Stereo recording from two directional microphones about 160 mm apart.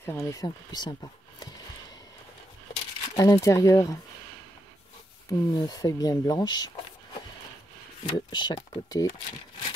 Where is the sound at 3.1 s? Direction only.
20° left (ahead or behind).